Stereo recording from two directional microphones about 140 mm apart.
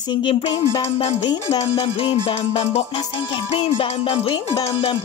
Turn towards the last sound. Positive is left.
turn(degrees=45)  # may be behind; listen again after turning